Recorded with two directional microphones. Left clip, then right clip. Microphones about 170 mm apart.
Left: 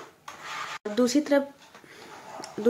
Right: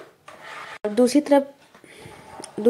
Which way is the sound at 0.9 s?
20° right (ahead or behind).